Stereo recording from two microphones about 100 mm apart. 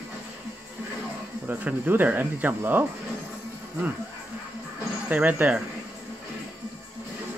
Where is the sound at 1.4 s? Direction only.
15° right (ahead or behind).